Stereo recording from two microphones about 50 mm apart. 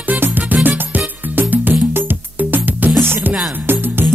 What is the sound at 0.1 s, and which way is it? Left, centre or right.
Music, right.